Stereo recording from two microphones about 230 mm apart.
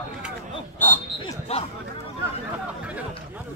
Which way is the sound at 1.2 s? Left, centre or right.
Left.